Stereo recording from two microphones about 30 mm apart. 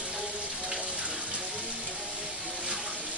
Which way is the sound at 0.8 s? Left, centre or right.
Right.